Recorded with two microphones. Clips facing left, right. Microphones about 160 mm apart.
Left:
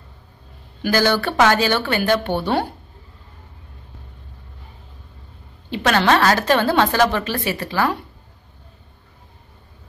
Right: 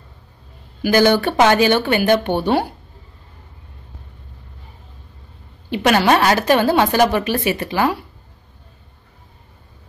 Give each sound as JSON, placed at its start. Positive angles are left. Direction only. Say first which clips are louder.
{"t": 0.8, "sound": "a woman's voice", "louder": "right 4 dB", "side_deg": -15}
{"t": 5.9, "sound": "a woman's voice", "louder": "right 2 dB", "side_deg": -15}